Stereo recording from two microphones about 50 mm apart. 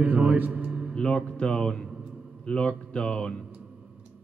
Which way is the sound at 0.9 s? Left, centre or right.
Centre.